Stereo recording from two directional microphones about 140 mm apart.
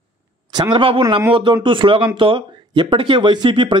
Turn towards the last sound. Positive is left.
turn(degrees=-35)  # may be behind; listen again after turning